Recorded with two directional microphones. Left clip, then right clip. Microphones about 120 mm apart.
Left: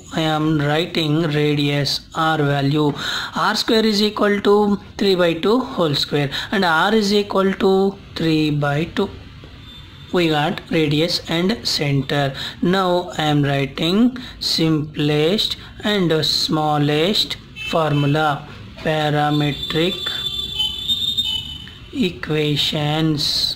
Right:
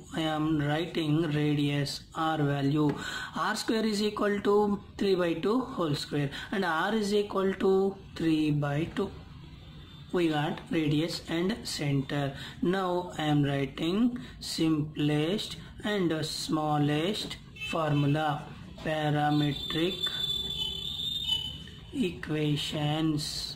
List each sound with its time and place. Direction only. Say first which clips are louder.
0.1 s speech: left 10 dB; 40° left (ahead or behind)
10.1 s speech: left 11 dB; 35° left (ahead or behind)
22.0 s speech: left 11 dB; 35° left (ahead or behind)